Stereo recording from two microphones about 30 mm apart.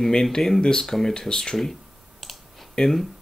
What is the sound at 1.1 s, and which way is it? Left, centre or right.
Speech, left.